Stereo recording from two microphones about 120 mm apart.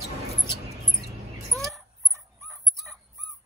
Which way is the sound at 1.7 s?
Centre (ahead or behind).